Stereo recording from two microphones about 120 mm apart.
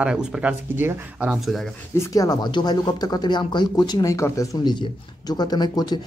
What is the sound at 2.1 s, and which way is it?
Speech, 30° left (ahead or behind).